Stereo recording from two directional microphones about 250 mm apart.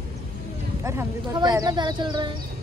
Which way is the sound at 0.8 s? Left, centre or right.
Centre.